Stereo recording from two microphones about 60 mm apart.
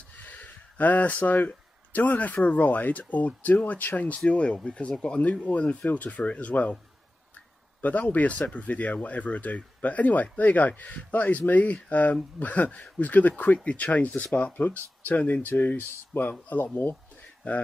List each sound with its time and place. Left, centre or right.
0.2 s a sound: left
1.5 s speech: left
7.8 s speech: left